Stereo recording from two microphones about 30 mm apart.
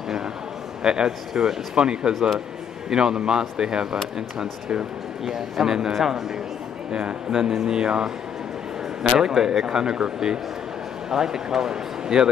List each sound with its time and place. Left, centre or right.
0.8 s speech: right
1.8 s speech: right
2.1 s a man's voice: centre
2.9 s speech: right
5.2 s a man's voice: centre
6.9 s speech: right
7.2 s speech: right
9.2 s speech: centre
11.1 s speech: centre